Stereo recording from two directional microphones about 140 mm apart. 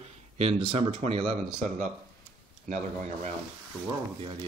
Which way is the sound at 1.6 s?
60° right (ahead or behind).